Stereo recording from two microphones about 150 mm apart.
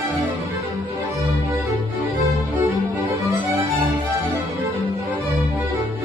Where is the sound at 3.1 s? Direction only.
20° right (ahead or behind).